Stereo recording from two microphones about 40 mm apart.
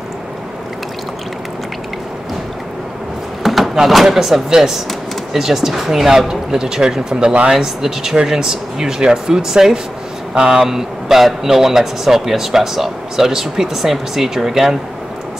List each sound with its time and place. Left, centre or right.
3.4 s speech: centre